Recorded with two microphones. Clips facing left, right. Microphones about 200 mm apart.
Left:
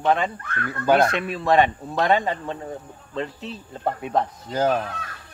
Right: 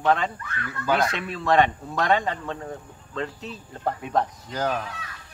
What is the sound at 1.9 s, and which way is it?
Speech, 25° left (ahead or behind).